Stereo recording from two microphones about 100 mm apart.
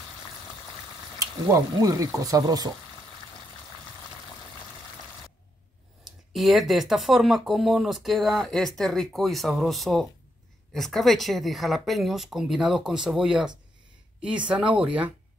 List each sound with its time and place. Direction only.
1.2 s speech: 35° right (ahead or behind)
6.0 s speech: centre (ahead or behind)